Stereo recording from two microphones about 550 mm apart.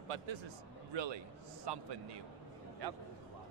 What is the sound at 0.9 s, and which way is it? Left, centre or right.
Speech, right.